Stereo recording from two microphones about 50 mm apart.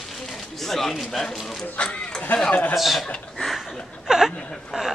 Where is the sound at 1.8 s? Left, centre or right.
Left.